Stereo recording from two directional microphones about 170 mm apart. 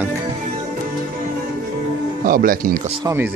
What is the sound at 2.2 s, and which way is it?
Speech, 55° right (ahead or behind).